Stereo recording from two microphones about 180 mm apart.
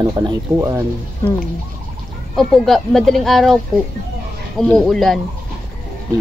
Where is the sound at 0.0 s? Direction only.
20° right (ahead or behind).